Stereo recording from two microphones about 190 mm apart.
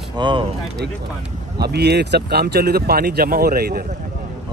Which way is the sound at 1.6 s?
60° right (ahead or behind).